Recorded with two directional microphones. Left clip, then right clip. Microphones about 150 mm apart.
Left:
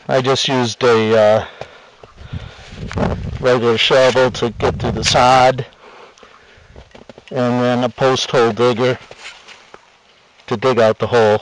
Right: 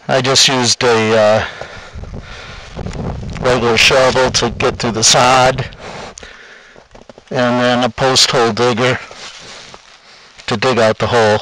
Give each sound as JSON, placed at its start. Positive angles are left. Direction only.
{"t": 0.0, "sound": "a man's voice", "side_deg": -35}
{"t": 3.5, "sound": "a man's voice", "side_deg": -40}
{"t": 7.2, "sound": "a man's voice", "side_deg": -35}
{"t": 10.4, "sound": "a man's voice", "side_deg": -35}